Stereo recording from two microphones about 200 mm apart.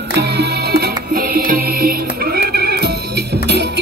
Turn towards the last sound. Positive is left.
turn(degrees=-55)  # may be behind; listen again after turning